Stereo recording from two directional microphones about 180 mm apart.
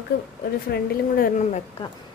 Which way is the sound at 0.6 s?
55° left (ahead or behind).